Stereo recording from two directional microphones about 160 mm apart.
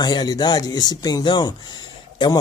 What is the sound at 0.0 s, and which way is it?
Speech, 25° left (ahead or behind).